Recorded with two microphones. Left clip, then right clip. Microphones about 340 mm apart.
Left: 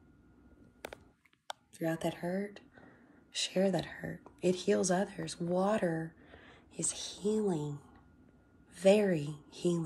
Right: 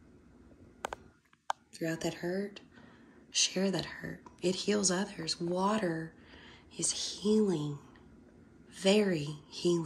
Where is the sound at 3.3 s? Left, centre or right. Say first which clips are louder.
Right 1 dB; centre.